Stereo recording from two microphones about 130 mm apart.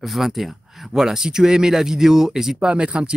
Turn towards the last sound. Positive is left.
turn(degrees=-10)  # may be behind; listen again after turning